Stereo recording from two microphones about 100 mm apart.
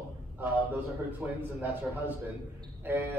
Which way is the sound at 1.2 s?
15° right (ahead or behind).